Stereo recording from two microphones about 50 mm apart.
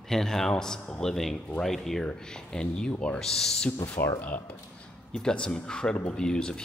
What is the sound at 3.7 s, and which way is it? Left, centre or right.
Speech, left.